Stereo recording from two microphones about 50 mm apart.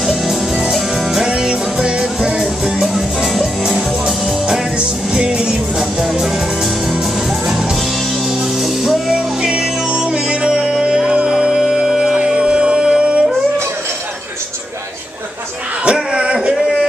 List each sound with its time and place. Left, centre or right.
0.1 s music: centre
2.4 s music: centre
6.1 s music: centre
8.5 s music: centre
9.4 s music: centre
15.8 s music: centre